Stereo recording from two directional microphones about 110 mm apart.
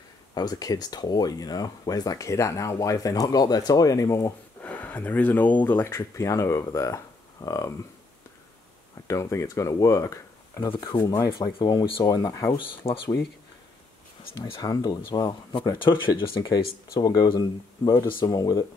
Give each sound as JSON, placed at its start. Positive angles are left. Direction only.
{"t": 0.3, "sound": "speech", "side_deg": 40}
{"t": 4.6, "sound": "speech", "side_deg": 15}
{"t": 9.0, "sound": "speech", "side_deg": 30}
{"t": 10.7, "sound": "speech", "side_deg": 40}
{"t": 12.8, "sound": "speech", "side_deg": 50}
{"t": 14.4, "sound": "speech", "side_deg": 40}
{"t": 15.8, "sound": "speech", "side_deg": 50}